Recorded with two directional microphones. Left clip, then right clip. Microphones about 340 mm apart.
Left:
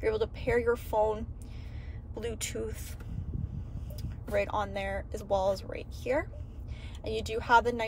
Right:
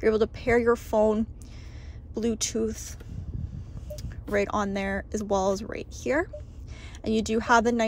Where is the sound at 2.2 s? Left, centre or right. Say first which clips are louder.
Right 8 dB; centre.